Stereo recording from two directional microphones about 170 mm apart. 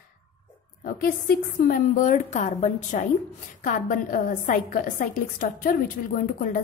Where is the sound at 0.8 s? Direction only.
60° left (ahead or behind).